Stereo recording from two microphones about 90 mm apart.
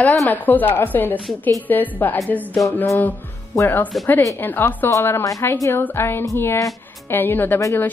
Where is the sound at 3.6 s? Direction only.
25° left (ahead or behind).